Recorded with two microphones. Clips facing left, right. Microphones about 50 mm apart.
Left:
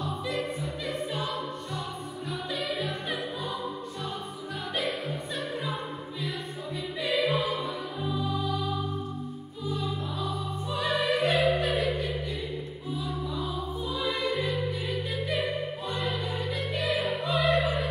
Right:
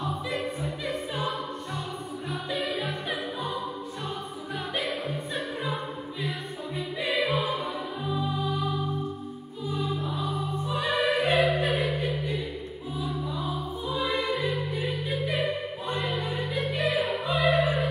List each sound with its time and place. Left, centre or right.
2.5 s music: centre
7.1 s choir: centre
10.8 s music: centre
13.8 s music: right
15.0 s music: centre
16.7 s music: centre